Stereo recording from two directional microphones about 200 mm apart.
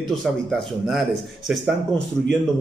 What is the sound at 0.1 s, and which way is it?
A man's voice, centre (ahead or behind).